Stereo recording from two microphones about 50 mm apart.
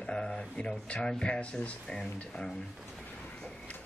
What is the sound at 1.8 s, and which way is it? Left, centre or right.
Speech, centre.